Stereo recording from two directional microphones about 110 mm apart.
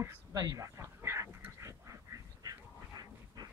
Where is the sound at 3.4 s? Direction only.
35° right (ahead or behind).